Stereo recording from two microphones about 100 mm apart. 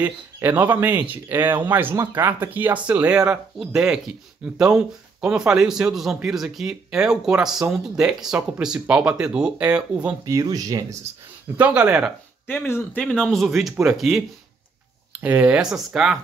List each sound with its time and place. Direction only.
0.0 s a man's voice: 20° right (ahead or behind)
10.2 s speech: 35° right (ahead or behind)
11.5 s speech: 15° right (ahead or behind)
12.4 s speech: 20° left (ahead or behind)
13.0 s a man's voice: 5° left (ahead or behind)